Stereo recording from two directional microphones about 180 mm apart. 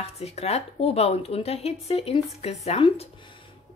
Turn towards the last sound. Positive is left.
turn(degrees=30)  # may be behind; listen again after turning